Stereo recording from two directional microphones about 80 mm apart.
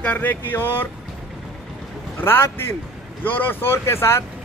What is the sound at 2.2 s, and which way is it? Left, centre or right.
Speech, left.